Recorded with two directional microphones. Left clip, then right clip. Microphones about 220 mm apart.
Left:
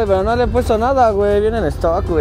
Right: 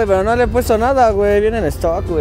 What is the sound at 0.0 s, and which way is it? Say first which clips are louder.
Speech: right 1 dB; 15° right (ahead or behind).